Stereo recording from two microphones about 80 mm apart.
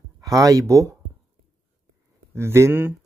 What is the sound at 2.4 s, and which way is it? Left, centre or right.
Speech, right.